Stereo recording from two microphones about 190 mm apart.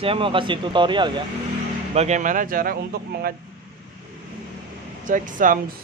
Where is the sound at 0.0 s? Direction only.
30° right (ahead or behind).